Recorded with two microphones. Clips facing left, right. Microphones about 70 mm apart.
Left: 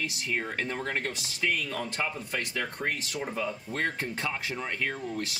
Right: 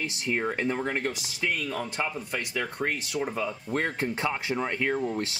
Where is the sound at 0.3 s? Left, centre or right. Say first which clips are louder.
Right 6 dB; right.